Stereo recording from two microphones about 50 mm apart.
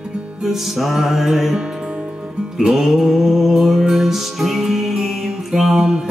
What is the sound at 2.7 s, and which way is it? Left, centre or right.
Music, centre.